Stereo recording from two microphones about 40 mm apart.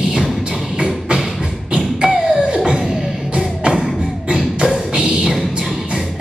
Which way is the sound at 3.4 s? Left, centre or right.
Right.